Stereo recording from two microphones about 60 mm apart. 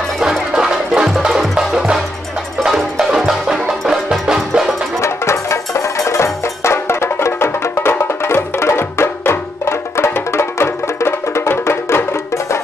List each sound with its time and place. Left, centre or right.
0.2 s music: centre
5.0 s music: left